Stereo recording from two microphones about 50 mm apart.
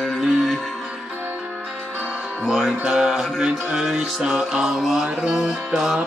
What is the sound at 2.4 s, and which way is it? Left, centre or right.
Music, centre.